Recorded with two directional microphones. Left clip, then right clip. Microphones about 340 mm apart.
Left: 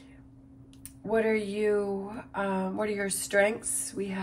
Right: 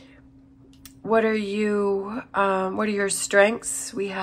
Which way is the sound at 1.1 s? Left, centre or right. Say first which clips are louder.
Right 6 dB; centre.